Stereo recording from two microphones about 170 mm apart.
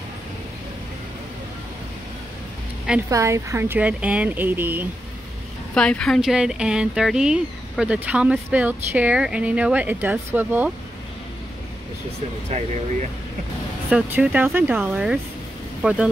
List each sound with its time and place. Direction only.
3.1 s speech: 20° right (ahead or behind)
5.8 s speech: 5° left (ahead or behind); by 10.7 s 10° right (ahead or behind)
13.8 s speech: 5° right (ahead or behind)